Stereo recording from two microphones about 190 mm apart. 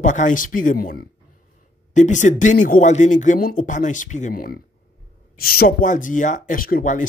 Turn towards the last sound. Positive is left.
turn(degrees=45)  # may be behind; listen again after turning